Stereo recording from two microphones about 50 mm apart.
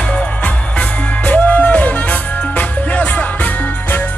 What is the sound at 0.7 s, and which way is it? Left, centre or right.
Music, left.